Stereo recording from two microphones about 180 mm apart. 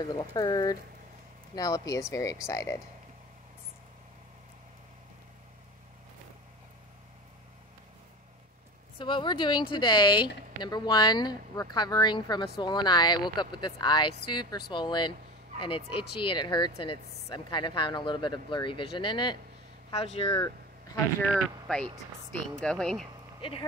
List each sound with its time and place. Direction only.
0.0 s speech: 20° left (ahead or behind)
8.9 s speech: 25° left (ahead or behind)
20.3 s a sound: 20° left (ahead or behind)
21.3 s speech: 5° left (ahead or behind)